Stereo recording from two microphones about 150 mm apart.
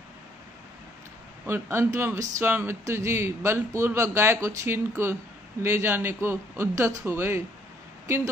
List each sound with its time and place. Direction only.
1.4 s speech: 15° right (ahead or behind)